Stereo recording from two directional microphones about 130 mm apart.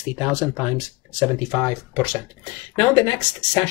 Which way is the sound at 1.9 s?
30° left (ahead or behind).